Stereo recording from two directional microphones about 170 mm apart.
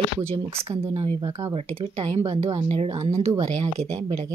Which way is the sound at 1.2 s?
20° right (ahead or behind).